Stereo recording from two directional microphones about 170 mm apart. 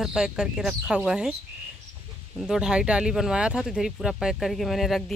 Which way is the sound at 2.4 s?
5° right (ahead or behind).